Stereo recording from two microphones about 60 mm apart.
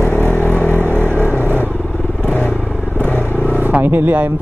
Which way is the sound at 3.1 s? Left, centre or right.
Left.